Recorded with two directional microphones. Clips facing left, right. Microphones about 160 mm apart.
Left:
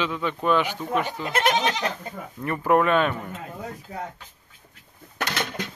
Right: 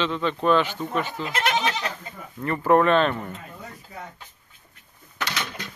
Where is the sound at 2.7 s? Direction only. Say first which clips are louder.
Right 2 dB; 10° left (ahead or behind).